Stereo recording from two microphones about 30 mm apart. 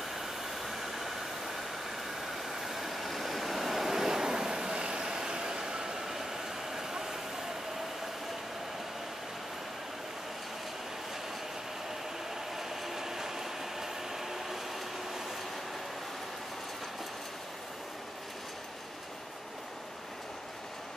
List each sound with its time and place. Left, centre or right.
0.0 s a sound: centre
2.4 s vehicle: centre
12.5 s train: centre